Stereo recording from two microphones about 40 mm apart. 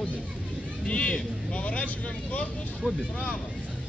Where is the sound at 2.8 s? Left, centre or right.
Right.